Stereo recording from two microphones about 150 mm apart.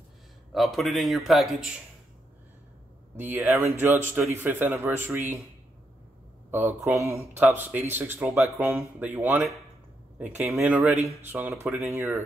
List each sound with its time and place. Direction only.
0.5 s a man's voice: centre (ahead or behind)
3.2 s speech: 15° right (ahead or behind)
6.5 s speech: 15° right (ahead or behind)